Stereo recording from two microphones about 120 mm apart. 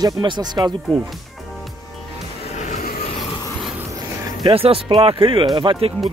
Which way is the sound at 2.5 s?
80° left.